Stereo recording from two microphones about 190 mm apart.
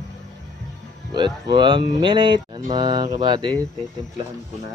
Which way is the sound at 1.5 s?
25° right (ahead or behind).